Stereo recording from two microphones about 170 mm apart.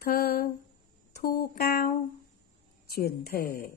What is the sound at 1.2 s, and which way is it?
Speech, 65° left (ahead or behind).